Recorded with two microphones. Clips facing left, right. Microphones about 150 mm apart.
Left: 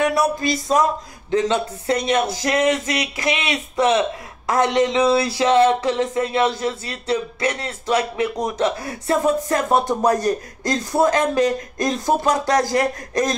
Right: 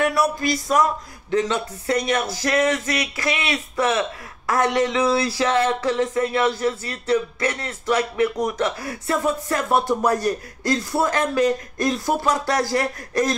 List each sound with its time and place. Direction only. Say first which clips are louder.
0.0 s speech: left 2 dB; 20° left (ahead or behind)